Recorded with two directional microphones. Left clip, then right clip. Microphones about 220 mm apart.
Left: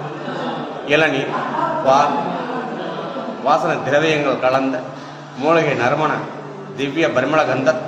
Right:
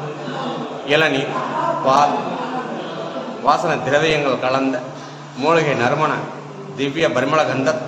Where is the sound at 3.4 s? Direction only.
15° right (ahead or behind).